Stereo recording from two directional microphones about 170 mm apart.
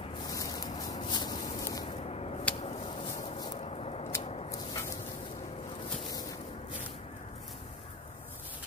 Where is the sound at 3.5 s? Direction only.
35° left (ahead or behind).